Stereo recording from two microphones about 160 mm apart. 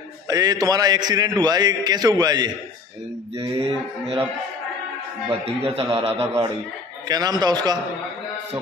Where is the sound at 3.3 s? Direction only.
40° right (ahead or behind).